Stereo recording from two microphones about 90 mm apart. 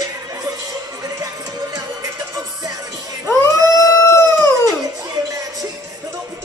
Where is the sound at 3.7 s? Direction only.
30° left (ahead or behind).